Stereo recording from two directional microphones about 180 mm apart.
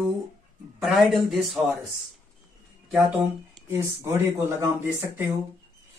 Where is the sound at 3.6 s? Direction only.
15° right (ahead or behind).